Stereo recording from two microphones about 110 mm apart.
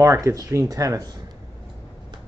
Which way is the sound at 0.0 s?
25° right (ahead or behind).